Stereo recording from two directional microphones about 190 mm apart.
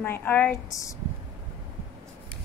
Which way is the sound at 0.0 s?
10° left (ahead or behind).